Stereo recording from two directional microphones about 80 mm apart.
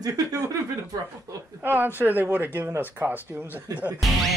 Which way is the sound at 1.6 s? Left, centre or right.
Right.